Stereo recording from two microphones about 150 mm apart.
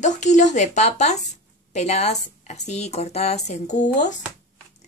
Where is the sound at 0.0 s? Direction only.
55° left (ahead or behind).